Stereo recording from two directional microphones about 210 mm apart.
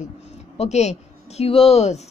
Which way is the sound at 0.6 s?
30° left (ahead or behind).